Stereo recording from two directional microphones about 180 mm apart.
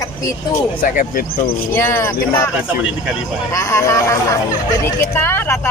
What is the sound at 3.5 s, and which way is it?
Speech, 15° left (ahead or behind).